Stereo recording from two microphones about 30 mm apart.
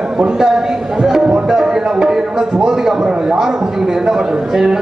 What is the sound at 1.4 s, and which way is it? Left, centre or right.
Music, centre.